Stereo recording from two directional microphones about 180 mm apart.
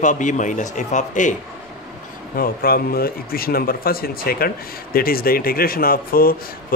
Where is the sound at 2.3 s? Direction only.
55° left (ahead or behind).